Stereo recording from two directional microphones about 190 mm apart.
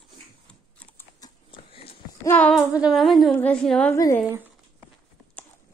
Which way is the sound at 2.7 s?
5° right (ahead or behind).